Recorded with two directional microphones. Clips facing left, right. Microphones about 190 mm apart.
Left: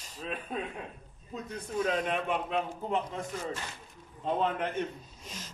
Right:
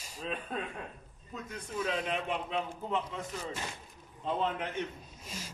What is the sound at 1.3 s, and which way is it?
A man's voice, 40° left (ahead or behind).